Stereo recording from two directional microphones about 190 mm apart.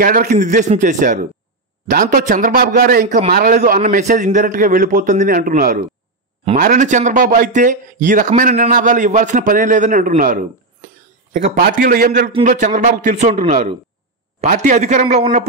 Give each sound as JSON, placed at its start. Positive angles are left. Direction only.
{"t": 0.0, "sound": "a man's voice", "side_deg": -45}
{"t": 11.4, "sound": "a man's voice", "side_deg": -50}